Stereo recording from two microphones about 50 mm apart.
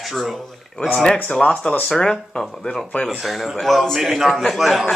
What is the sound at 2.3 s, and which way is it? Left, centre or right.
A man's voice, centre.